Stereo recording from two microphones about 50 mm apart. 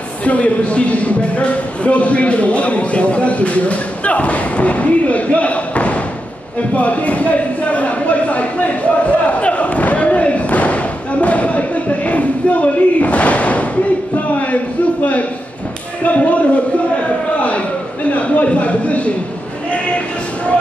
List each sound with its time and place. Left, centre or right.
0.2 s speech: left
6.7 s a sound: left
16.0 s speech: left
18.1 s speech: left